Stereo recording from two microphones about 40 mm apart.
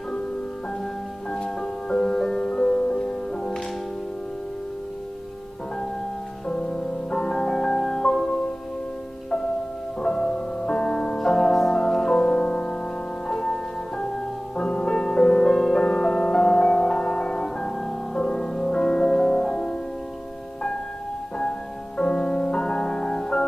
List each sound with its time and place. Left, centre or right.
1.9 s music: centre
7.1 s music: centre
10.0 s music: centre
14.6 s music: left
21.4 s music: centre